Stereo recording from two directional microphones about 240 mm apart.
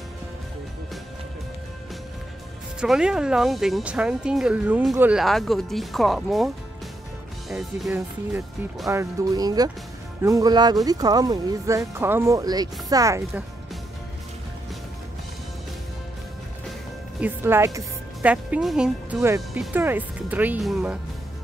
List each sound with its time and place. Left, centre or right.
2.8 s speech: centre
17.2 s a woman's voice: centre